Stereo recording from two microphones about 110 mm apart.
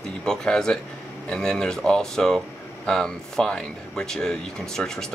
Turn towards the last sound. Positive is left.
turn(degrees=5)  # may be behind; listen again after turning